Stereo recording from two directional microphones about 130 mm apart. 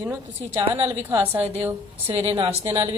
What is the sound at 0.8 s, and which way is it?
Speech, 20° right (ahead or behind).